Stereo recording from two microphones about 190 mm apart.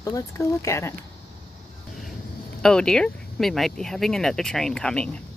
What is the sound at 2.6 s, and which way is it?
Speech, 5° left (ahead or behind).